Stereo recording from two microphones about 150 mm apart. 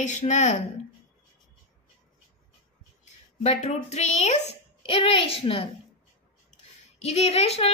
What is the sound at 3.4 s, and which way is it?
A child's voice, 50° left (ahead or behind).